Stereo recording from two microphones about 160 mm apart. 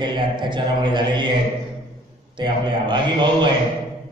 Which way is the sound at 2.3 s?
30° right (ahead or behind).